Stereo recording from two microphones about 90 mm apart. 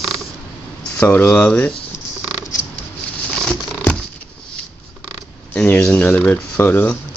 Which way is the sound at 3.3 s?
10° left (ahead or behind).